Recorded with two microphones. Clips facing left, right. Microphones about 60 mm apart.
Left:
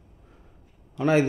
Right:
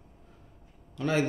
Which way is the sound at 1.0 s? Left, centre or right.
Left.